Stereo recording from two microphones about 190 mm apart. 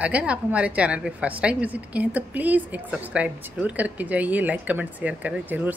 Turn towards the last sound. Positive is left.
turn(degrees=-10)  # may be behind; listen again after turning